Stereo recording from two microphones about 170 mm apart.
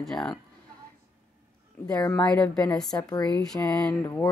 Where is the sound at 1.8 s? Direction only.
10° left (ahead or behind).